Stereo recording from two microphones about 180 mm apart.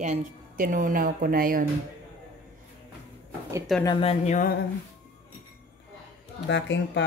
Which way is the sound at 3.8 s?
30° left (ahead or behind).